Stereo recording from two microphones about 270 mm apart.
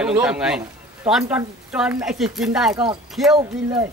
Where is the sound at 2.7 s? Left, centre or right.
Centre.